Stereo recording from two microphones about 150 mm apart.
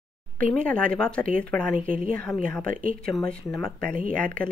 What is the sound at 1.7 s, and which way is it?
Speech, 65° right (ahead or behind).